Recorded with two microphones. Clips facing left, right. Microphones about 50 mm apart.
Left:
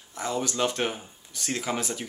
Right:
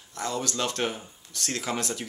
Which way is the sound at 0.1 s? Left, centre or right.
Centre.